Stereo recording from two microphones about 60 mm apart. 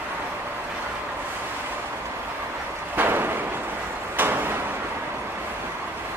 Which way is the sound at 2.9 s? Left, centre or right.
Right.